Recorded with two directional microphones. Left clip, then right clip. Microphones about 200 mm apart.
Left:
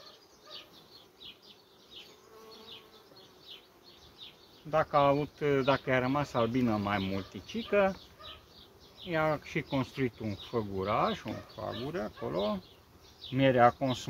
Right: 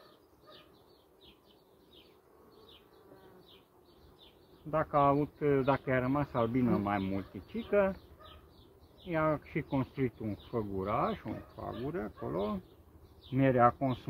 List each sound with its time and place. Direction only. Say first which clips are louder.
4.6 s speech: left 2 dB; 15° left (ahead or behind)
9.0 s speech: left 1 dB; 20° left (ahead or behind)